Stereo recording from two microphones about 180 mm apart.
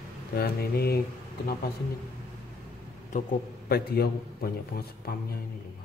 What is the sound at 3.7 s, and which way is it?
A man's voice, 60° left (ahead or behind).